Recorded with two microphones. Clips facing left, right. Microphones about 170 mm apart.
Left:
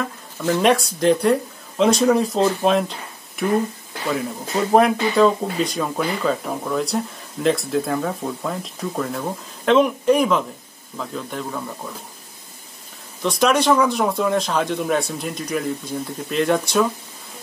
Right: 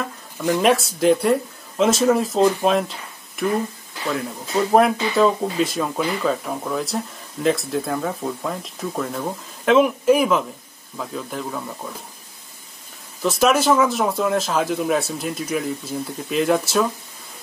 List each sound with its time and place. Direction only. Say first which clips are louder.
0.4 s speech: even; 10° right (ahead or behind)
0.7 s speech: even; centre (ahead or behind)
13.2 s speech: even; 5° right (ahead or behind)